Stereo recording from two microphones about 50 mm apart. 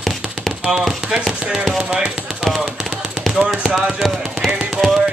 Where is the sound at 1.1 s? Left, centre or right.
Centre.